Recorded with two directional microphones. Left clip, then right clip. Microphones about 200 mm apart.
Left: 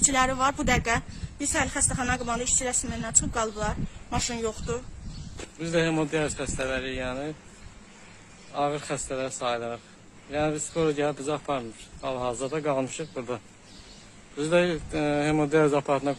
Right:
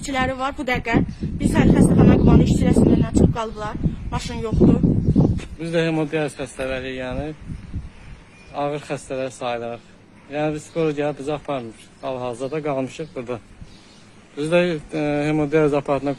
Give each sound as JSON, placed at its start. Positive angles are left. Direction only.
{"t": 0.0, "sound": "speech", "side_deg": 35}
{"t": 5.6, "sound": "a man's voice", "side_deg": -5}
{"t": 8.5, "sound": "a man's voice", "side_deg": -10}